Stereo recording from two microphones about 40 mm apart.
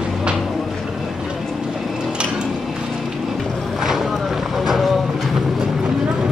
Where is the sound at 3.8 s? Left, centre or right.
Centre.